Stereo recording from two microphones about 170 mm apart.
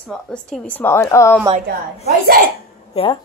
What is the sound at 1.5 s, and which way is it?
Speech, 45° right (ahead or behind).